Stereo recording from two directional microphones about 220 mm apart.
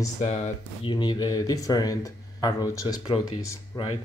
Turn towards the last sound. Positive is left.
turn(degrees=15)  # may be behind; listen again after turning